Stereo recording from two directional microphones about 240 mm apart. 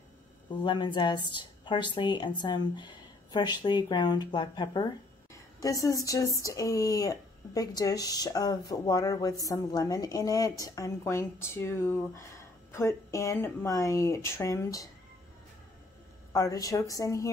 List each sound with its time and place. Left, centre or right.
0.5 s a woman's voice: centre
16.3 s speech: centre